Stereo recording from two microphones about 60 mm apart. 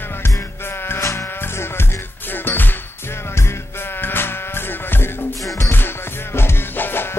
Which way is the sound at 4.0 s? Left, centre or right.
Left.